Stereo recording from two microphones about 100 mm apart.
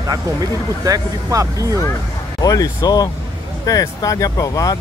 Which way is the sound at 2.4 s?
35° left (ahead or behind).